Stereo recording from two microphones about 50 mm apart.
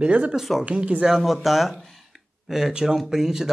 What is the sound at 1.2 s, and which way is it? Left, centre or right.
Speech, centre.